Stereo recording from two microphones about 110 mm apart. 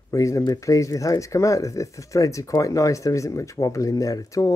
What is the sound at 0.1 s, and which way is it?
Speech, 30° left (ahead or behind).